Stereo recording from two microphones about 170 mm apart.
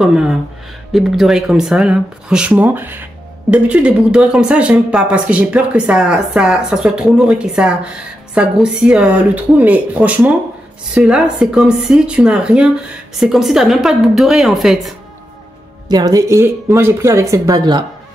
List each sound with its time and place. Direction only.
0.0 s speech: 5° right (ahead or behind)
15.9 s speech: 25° right (ahead or behind)